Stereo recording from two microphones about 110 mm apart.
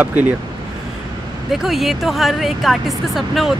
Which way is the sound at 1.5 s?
Centre (ahead or behind).